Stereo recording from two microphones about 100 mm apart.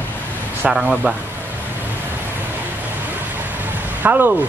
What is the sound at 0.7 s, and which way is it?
Speech, 5° right (ahead or behind).